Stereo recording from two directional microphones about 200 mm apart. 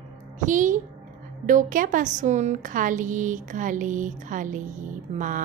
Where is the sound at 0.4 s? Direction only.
40° right (ahead or behind).